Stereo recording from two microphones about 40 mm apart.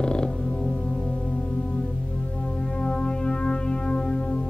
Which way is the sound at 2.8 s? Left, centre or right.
Left.